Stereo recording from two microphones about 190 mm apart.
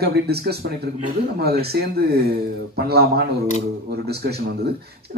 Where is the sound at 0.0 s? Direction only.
55° right (ahead or behind).